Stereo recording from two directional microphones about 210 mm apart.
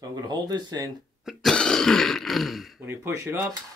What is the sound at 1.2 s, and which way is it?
Speech, centre (ahead or behind).